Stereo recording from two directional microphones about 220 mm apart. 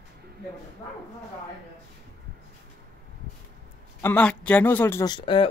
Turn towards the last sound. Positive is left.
turn(degrees=25)  # may be behind; listen again after turning